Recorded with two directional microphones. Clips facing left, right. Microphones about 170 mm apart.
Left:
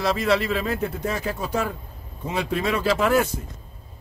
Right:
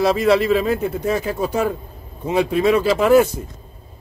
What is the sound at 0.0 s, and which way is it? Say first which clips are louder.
A man's voice: right 6 dB; 10° right (ahead or behind).